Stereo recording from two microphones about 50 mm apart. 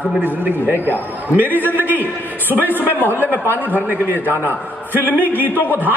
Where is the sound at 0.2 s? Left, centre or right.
Right.